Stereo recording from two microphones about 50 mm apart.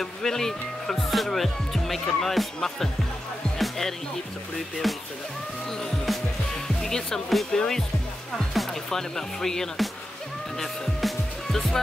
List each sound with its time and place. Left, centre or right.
0.0 s speech: centre
3.5 s music: centre
6.8 s speech: centre
10.6 s music: centre